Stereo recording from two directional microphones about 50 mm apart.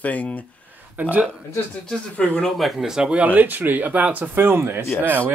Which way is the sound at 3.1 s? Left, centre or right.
Right.